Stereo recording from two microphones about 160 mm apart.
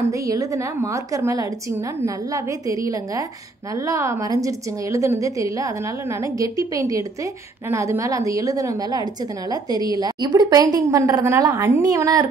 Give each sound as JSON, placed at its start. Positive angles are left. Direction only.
{"t": 0.1, "sound": "a woman's voice", "side_deg": -20}